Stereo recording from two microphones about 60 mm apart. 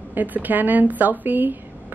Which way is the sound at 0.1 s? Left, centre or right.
Right.